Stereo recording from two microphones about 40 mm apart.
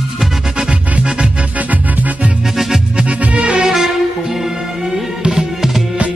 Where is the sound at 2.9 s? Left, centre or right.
Right.